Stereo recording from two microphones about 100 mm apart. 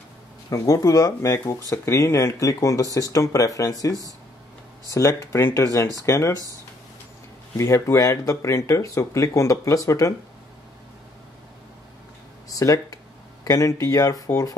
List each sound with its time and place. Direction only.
0.5 s speech: 35° left (ahead or behind)
4.8 s speech: 30° left (ahead or behind)
7.5 s speech: 30° left (ahead or behind)
12.4 s speech: 35° left (ahead or behind)